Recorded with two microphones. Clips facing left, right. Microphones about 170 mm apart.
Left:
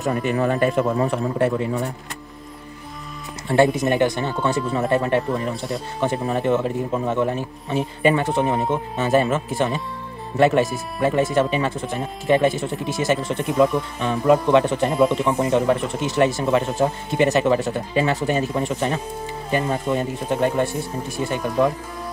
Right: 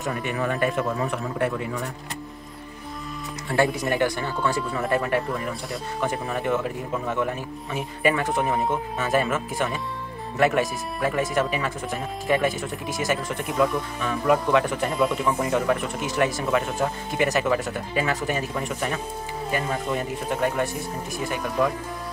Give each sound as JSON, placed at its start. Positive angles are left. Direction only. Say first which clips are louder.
{"t": 0.0, "sound": "a man's voice", "louder": "left 6 dB", "side_deg": 35}
{"t": 3.4, "sound": "speech", "louder": "left 6 dB", "side_deg": 20}